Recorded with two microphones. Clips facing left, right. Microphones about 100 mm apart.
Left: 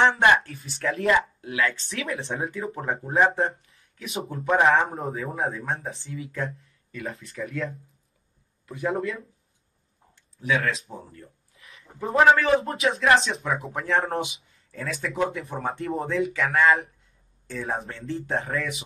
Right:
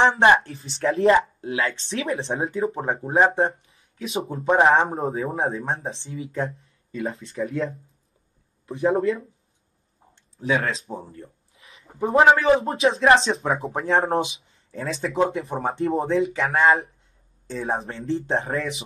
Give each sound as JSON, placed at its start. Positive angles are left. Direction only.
{"t": 0.0, "sound": "speech", "side_deg": -25}
{"t": 10.3, "sound": "a sound", "side_deg": -30}
{"t": 12.0, "sound": "speech", "side_deg": -25}